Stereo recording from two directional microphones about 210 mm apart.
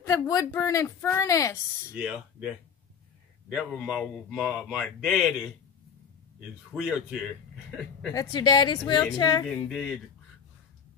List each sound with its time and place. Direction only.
0.0 s a woman's voice: 15° left (ahead or behind)
2.0 s speech: 5° right (ahead or behind)
6.7 s speech: 5° right (ahead or behind)
8.1 s a woman's voice: 20° left (ahead or behind)
9.5 s speech: centre (ahead or behind)